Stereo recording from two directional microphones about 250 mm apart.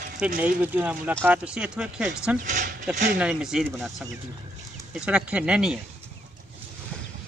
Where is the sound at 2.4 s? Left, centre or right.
Right.